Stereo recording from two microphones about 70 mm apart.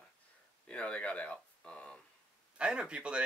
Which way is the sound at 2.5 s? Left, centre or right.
Centre.